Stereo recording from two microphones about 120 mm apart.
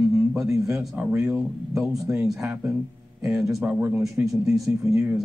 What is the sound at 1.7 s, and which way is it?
Speech, 5° right (ahead or behind).